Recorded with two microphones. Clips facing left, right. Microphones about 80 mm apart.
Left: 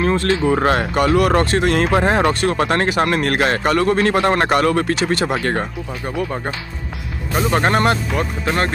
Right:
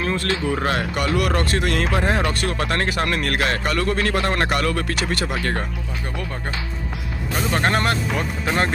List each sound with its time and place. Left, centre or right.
0.0 s a sound: left
0.5 s speech: left
1.2 s speech: left
1.9 s speech: left
2.4 s speech: left
7.5 s speech: centre
8.1 s speech: centre